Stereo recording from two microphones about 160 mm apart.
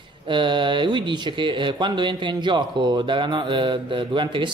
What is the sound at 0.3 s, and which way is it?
Speech, 30° right (ahead or behind).